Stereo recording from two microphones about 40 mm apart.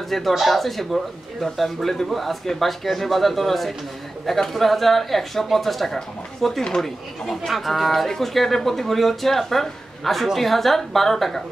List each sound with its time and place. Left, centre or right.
0.3 s speech: centre
6.6 s speech: centre
7.2 s speech: centre